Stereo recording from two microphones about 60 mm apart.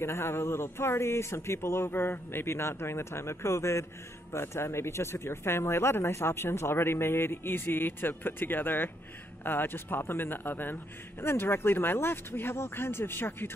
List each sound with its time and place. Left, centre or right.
0.0 s a man's voice: left